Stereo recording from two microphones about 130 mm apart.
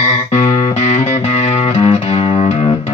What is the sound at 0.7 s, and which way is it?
Music, 55° left (ahead or behind).